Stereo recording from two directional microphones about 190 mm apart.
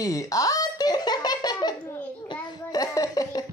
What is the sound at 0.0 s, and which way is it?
Giggle, 15° left (ahead or behind).